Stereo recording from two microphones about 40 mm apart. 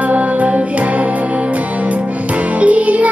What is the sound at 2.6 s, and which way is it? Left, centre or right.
Music, right.